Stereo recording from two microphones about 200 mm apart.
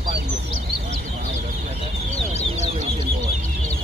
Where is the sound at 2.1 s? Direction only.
30° left (ahead or behind).